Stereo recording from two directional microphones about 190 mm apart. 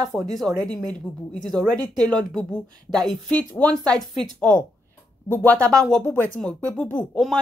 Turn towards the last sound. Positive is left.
turn(degrees=5)  # may be behind; listen again after turning